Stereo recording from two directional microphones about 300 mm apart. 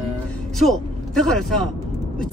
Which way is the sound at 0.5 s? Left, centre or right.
Centre.